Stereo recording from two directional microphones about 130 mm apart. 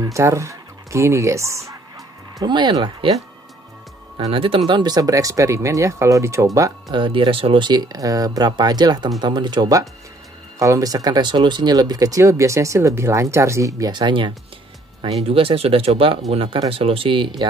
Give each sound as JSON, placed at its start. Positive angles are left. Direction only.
{"t": 0.0, "sound": "speech", "side_deg": -25}
{"t": 2.3, "sound": "speech", "side_deg": -35}
{"t": 4.2, "sound": "speech", "side_deg": -45}
{"t": 4.6, "sound": "speech", "side_deg": -35}
{"t": 7.0, "sound": "speech", "side_deg": -40}
{"t": 15.0, "sound": "speech", "side_deg": -50}